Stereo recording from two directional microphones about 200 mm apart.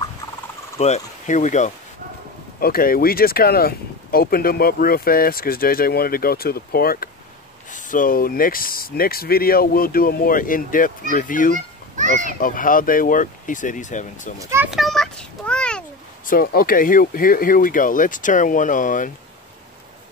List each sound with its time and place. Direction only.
0.7 s speech: 35° left (ahead or behind)
14.4 s speech: 15° right (ahead or behind)
14.7 s a sound: centre (ahead or behind)
16.3 s speech: 45° left (ahead or behind)